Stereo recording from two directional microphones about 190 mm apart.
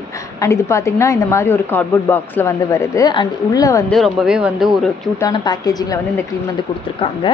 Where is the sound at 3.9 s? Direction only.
Centre (ahead or behind).